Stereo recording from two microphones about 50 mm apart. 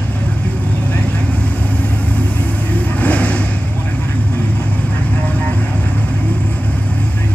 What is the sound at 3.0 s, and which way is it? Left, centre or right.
Vehicle, left.